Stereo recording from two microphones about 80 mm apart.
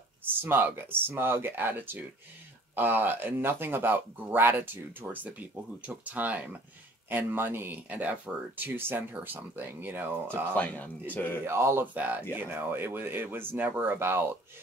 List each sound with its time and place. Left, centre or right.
0.4 s speech: right
10.5 s speech: centre
11.4 s speech: right
11.9 s speech: right